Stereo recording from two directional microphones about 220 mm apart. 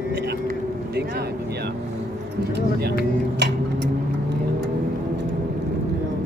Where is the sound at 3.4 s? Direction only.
55° right (ahead or behind).